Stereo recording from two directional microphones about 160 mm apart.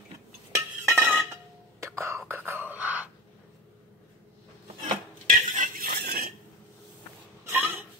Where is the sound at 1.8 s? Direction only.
15° right (ahead or behind).